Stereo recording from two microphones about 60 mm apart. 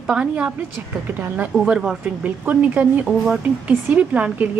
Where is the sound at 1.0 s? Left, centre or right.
Right.